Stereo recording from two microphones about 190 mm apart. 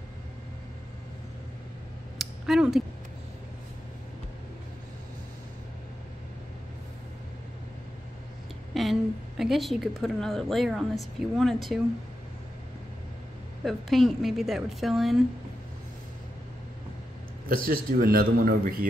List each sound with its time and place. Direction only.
2.1 s a sound: centre (ahead or behind)
8.7 s a woman's voice: centre (ahead or behind)
13.7 s a woman's voice: centre (ahead or behind)
17.5 s a man's voice: 50° right (ahead or behind)